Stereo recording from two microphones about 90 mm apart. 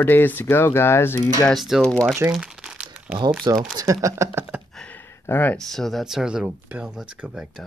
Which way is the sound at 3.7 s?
40° right (ahead or behind).